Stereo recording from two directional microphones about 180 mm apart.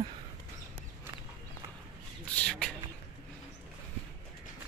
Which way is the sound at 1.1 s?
10° right (ahead or behind).